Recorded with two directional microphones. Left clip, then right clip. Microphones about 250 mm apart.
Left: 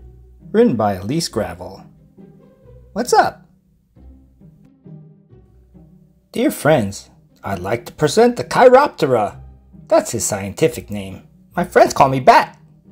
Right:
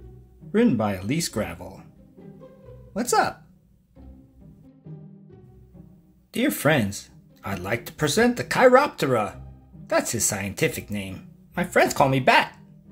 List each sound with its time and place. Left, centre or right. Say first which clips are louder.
0.5 s speech: left 8 dB; centre
2.9 s speech: left 8 dB; centre
6.3 s speech: left 7 dB; centre